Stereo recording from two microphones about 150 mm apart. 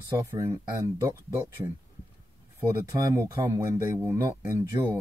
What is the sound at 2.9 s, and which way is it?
Speech, 20° right (ahead or behind).